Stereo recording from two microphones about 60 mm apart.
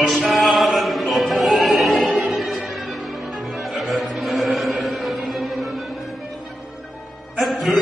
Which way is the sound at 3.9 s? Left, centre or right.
Centre.